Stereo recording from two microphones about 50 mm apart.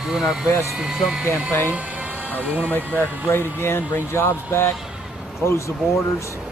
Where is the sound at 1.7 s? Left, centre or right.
Right.